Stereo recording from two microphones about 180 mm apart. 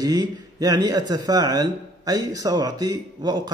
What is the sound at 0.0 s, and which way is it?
Speech, 20° right (ahead or behind).